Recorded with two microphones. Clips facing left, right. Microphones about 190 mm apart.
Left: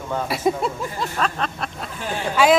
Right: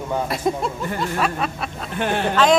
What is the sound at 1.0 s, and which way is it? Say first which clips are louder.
Speech: right 2 dB; 10° right (ahead or behind).